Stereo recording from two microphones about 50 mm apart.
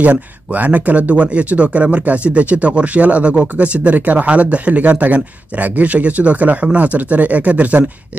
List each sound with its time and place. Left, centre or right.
0.0 s speech: right